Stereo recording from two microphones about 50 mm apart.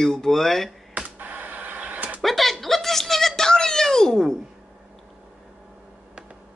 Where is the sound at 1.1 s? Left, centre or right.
Right.